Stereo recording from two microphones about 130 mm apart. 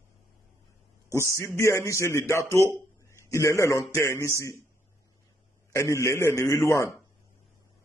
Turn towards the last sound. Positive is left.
turn(degrees=20)  # may be behind; listen again after turning